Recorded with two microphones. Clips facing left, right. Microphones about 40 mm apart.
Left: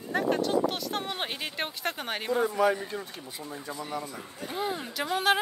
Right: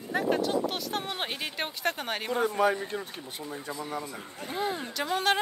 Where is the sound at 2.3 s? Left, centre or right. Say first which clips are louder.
Left 2 dB; right.